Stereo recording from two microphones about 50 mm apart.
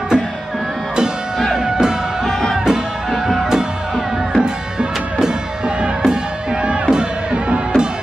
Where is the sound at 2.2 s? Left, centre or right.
Centre.